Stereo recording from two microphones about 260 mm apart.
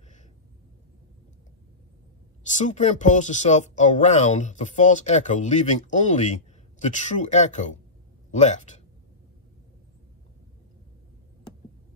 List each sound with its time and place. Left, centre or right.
2.4 s speech: left